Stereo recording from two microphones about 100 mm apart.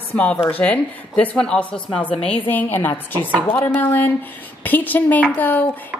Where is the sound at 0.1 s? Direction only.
15° left (ahead or behind).